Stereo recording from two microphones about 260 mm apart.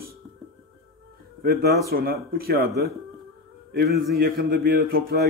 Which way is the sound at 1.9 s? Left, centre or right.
Right.